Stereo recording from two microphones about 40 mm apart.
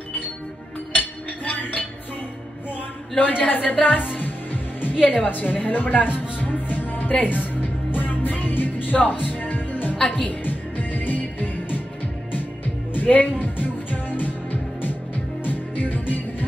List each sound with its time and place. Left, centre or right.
0.9 s chink: left
3.2 s a woman's voice: left
3.7 s music: left
5.0 s music: left
9.9 s a woman's voice: left
10.2 s music: left
12.9 s music: left